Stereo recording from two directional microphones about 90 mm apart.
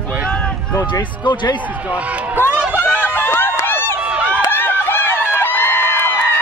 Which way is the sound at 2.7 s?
20° left (ahead or behind).